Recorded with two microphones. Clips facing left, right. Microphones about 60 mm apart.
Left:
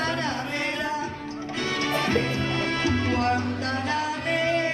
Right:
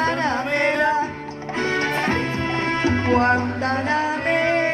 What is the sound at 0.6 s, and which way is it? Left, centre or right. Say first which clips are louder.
Music: right 12 dB; right.